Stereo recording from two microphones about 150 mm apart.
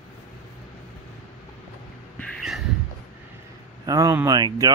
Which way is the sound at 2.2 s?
5° left (ahead or behind).